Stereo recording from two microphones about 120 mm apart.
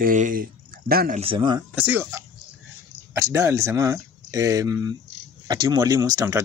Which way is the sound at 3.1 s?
25° right (ahead or behind).